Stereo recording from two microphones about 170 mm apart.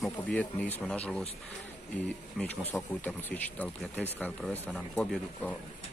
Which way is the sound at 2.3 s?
10° left (ahead or behind).